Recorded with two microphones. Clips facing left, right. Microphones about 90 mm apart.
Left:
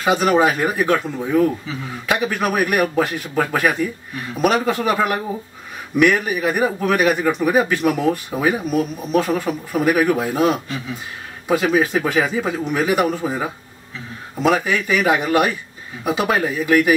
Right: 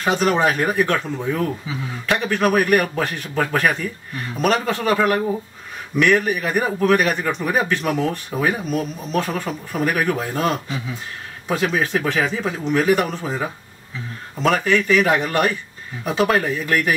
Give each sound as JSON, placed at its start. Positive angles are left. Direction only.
{"t": 0.0, "sound": "a man's voice", "side_deg": 10}
{"t": 2.0, "sound": "a man's voice", "side_deg": 5}